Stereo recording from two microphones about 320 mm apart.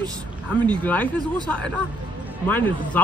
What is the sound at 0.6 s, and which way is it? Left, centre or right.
Speech, centre.